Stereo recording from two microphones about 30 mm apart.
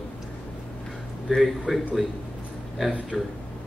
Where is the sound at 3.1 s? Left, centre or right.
Centre.